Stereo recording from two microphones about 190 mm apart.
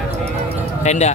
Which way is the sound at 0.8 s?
35° left (ahead or behind).